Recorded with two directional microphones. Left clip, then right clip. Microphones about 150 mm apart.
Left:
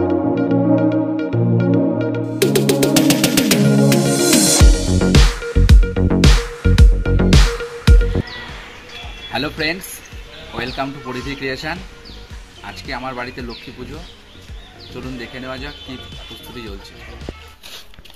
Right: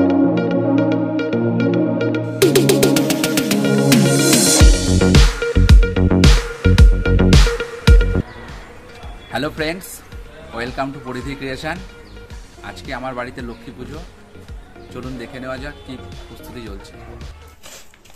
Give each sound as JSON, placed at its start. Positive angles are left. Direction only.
{"t": 0.1, "sound": "music", "side_deg": 0}
{"t": 9.3, "sound": "music", "side_deg": -15}
{"t": 10.6, "sound": "speech", "side_deg": -10}
{"t": 15.4, "sound": "speech", "side_deg": -15}